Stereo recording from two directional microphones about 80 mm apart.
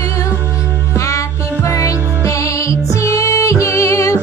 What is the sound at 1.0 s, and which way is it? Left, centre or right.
Music, left.